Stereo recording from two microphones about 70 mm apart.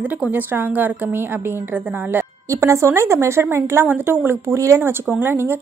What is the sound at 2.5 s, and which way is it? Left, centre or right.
A woman's voice, right.